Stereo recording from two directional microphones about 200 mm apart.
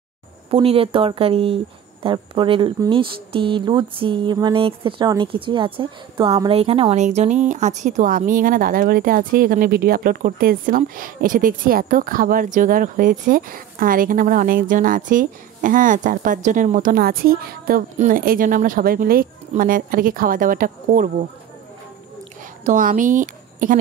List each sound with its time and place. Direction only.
0.5 s speech: 30° right (ahead or behind)
22.7 s speech: 40° right (ahead or behind)